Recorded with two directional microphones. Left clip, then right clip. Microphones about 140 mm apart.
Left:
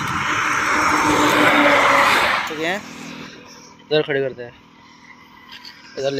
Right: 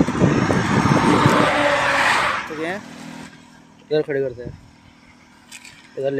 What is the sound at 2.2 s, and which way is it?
Dog, 65° left (ahead or behind).